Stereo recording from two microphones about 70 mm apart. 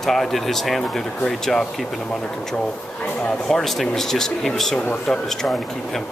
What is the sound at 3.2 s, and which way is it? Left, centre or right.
Speech, centre.